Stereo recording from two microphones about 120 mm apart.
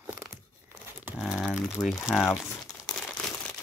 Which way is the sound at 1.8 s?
30° left (ahead or behind).